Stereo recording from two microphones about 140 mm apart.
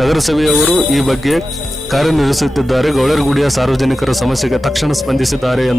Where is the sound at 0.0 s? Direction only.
Centre (ahead or behind).